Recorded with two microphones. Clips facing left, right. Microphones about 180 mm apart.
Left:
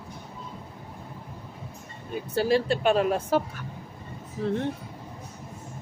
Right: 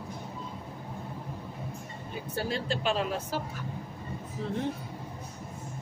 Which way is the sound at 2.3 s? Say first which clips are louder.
Left 9 dB; 70° left (ahead or behind).